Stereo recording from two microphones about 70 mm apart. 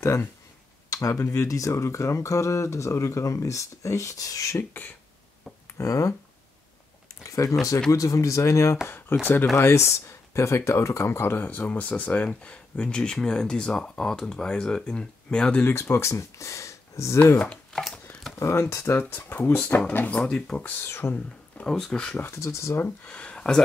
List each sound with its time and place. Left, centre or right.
0.8 s speech: left
5.8 s speech: left
7.2 s speech: left
9.2 s speech: left
9.6 s speech: left; by 15.6 s centre
15.6 s speech: left
17.4 s speech: centre
18.4 s speech: left
20.2 s speech: centre; by 21.2 s left
21.5 s speech: centre
22.3 s speech: left
23.0 s speech: centre